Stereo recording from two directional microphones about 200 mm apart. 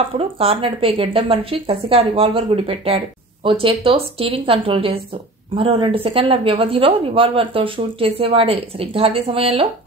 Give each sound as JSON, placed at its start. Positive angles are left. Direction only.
{"t": 0.4, "sound": "a woman's voice", "side_deg": -30}